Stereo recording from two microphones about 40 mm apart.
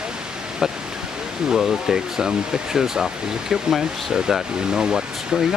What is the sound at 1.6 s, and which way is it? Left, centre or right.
Speech, centre.